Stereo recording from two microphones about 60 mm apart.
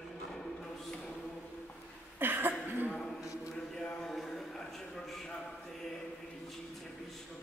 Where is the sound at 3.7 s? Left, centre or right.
Centre.